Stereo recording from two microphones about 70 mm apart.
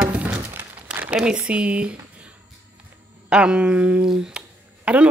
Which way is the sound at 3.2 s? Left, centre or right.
Centre.